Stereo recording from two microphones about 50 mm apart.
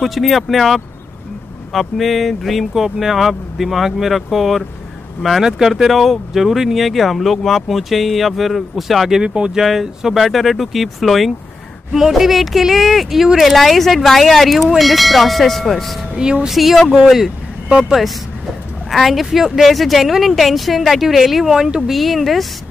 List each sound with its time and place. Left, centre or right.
0.0 s speech: centre
9.2 s speech: centre
9.6 s speech: centre
16.2 s speech: centre
16.4 s speech: centre
18.9 s speech: centre